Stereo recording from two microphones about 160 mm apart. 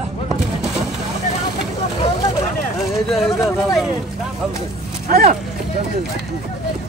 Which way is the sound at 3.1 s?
Centre (ahead or behind).